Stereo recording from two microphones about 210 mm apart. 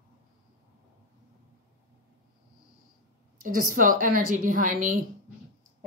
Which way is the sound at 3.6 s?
40° right (ahead or behind).